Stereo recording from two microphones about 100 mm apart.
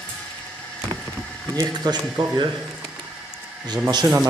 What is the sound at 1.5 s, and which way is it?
Speech, 40° right (ahead or behind).